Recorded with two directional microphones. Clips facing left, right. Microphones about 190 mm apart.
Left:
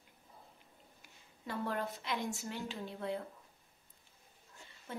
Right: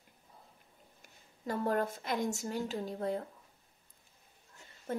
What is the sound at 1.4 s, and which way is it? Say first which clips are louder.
Speech: right 6 dB; 45° right (ahead or behind).